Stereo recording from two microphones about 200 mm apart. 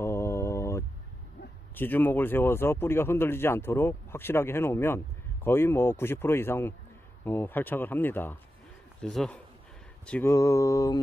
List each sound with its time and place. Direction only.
0.0 s mantra: 15° left (ahead or behind)
1.8 s a man's voice: 10° left (ahead or behind)